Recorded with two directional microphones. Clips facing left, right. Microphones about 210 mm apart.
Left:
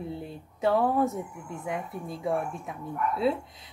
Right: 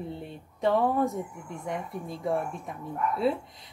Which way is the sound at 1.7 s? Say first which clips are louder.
Even; centre (ahead or behind).